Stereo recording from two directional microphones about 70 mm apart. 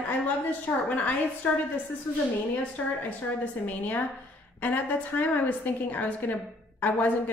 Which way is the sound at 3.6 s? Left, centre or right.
Left.